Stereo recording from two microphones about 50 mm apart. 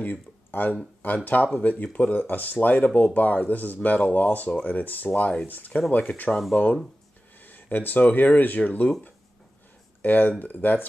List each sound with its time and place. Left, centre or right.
0.0 s speech: left
10.0 s speech: left